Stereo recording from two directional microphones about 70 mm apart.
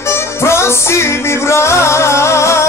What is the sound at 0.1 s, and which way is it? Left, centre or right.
Music, left.